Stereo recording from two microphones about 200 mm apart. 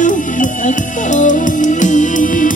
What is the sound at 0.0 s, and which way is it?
Music, 40° left (ahead or behind).